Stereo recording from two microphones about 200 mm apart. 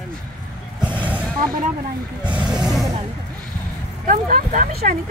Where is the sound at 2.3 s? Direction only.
20° right (ahead or behind).